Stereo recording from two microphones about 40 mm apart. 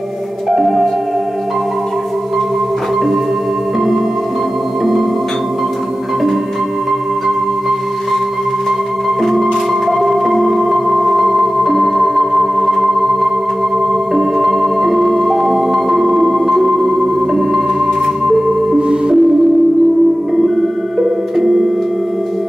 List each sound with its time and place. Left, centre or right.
0.5 s music: centre
9.2 s music: centre
18.2 s music: centre
18.8 s music: right
21.0 s music: centre